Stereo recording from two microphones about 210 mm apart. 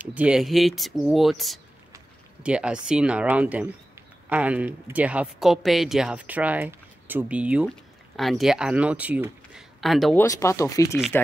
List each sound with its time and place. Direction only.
0.0 s speech: 5° right (ahead or behind)
10.2 s speech: 15° left (ahead or behind)